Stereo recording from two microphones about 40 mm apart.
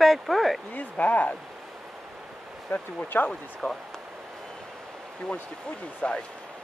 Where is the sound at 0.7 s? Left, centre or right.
Left.